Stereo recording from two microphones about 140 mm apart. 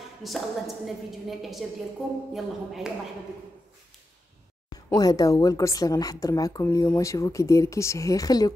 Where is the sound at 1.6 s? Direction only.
Centre (ahead or behind).